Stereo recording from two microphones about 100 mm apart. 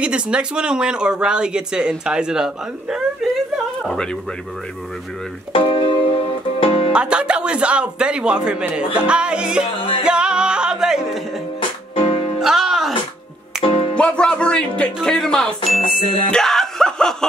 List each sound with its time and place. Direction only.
0.0 s speech: 10° right (ahead or behind)
3.8 s speech: 5° left (ahead or behind)
5.5 s music: 60° left (ahead or behind)
6.9 s speech: 10° right (ahead or behind)
10.0 s music: 10° right (ahead or behind)
11.9 s music: 70° left (ahead or behind)
12.4 s music: 5° right (ahead or behind)
13.6 s music: 65° left (ahead or behind)
13.9 s speech: 10° left (ahead or behind)